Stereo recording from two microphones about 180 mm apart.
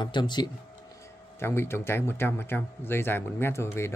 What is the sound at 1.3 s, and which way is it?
A man's voice, 15° left (ahead or behind).